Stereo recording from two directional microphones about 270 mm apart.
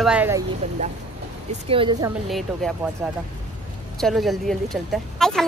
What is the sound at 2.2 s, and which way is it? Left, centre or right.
Speech, centre.